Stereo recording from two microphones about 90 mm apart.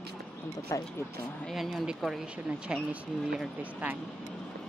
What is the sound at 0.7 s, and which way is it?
Speech, 35° left (ahead or behind).